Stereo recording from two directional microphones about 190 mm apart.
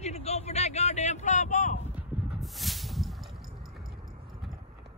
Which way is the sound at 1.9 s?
Centre (ahead or behind).